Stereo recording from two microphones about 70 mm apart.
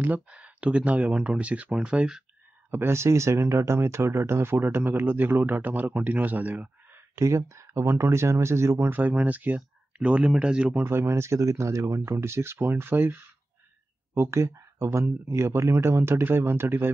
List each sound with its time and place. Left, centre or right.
0.0 s speech: right
2.7 s speech: right
7.2 s speech: right
8.9 s speech: right
10.8 s speech: right